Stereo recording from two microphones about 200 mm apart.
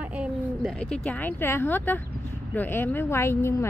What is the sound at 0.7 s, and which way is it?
A woman's voice, 5° left (ahead or behind).